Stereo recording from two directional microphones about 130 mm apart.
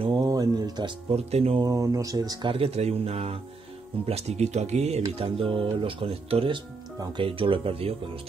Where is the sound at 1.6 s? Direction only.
25° right (ahead or behind).